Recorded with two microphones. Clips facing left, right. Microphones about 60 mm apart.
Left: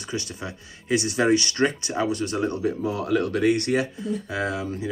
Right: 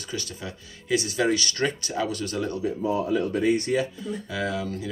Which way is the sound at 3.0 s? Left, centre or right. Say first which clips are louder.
Left 4 dB; left.